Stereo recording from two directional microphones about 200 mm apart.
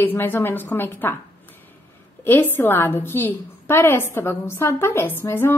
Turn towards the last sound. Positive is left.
turn(degrees=10)  # may be behind; listen again after turning